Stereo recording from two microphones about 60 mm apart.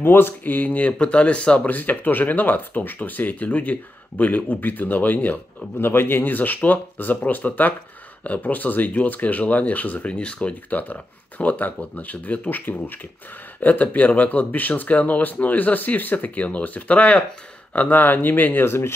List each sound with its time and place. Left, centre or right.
0.0 s speech: left